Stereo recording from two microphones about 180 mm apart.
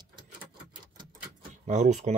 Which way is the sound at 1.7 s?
40° right (ahead or behind).